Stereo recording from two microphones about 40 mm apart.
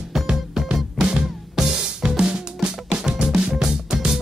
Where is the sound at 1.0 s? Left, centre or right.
Right.